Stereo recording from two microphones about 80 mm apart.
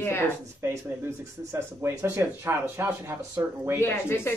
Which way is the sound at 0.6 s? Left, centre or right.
Right.